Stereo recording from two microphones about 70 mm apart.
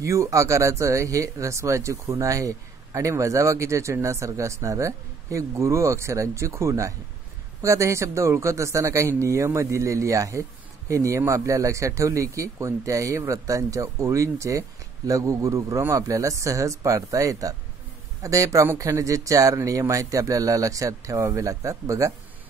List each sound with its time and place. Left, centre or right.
0.0 s speech: right